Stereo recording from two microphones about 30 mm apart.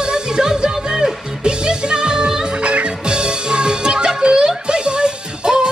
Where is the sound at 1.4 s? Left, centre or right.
Right.